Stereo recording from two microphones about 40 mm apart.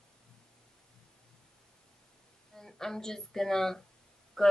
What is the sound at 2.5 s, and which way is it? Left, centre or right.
A woman's voice, centre.